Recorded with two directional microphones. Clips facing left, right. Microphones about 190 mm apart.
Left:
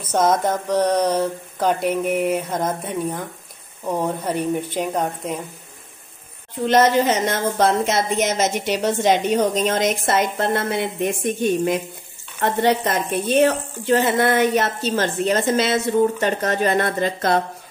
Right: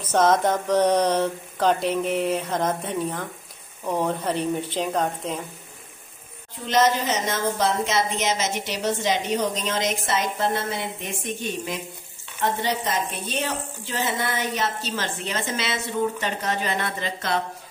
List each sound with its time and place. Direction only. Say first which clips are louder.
0.1 s speech: left 1 dB; 10° left (ahead or behind)
0.7 s mantra: left 1 dB; centre (ahead or behind)
1.9 s speech: left 3 dB; 10° left (ahead or behind)
6.6 s a woman's voice: left 5 dB; 55° left (ahead or behind)